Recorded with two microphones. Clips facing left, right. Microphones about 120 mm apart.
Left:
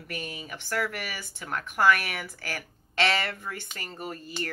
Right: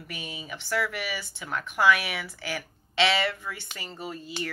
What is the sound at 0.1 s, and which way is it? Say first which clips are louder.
Speech: left 2 dB; 45° left (ahead or behind).